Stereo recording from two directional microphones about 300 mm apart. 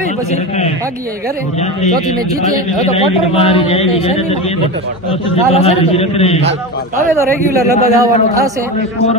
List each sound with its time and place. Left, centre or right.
2.8 s a man's voice: left
5.5 s a man's voice: centre
7.5 s a man's voice: centre